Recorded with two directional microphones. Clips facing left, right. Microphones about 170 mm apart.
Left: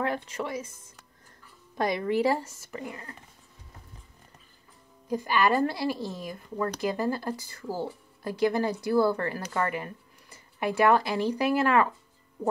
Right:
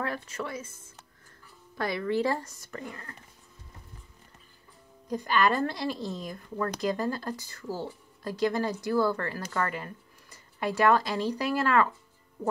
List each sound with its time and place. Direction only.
0.0 s speech: 20° left (ahead or behind)
5.1 s speech: 10° left (ahead or behind)